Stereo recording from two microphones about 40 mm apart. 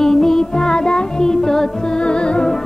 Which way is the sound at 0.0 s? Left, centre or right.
Centre.